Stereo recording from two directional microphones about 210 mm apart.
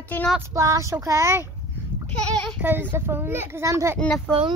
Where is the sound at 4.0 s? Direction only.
Centre (ahead or behind).